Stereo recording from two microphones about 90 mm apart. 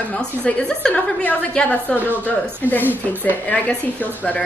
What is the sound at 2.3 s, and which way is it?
Chuckle, 20° left (ahead or behind).